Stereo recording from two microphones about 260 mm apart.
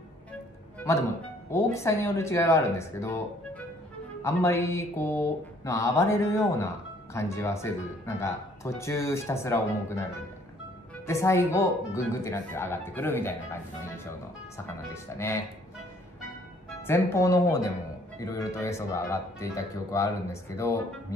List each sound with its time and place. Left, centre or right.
0.7 s music: centre
1.5 s speech: centre
11.1 s speech: centre
15.1 s speech: centre
16.8 s speech: centre